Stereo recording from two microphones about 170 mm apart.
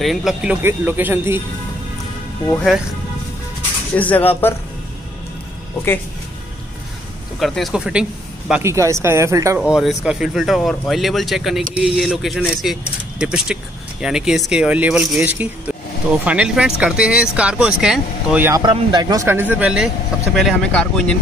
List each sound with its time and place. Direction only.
0.0 s speech: centre (ahead or behind)
3.9 s speech: 10° left (ahead or behind)
7.3 s speech: centre (ahead or behind)
8.6 s speech: 15° right (ahead or behind)
9.6 s speech: centre (ahead or behind)
18.6 s speech: 25° right (ahead or behind); by 21.1 s 5° left (ahead or behind)